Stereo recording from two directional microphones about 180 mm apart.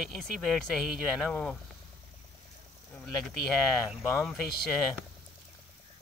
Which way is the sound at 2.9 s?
Centre (ahead or behind).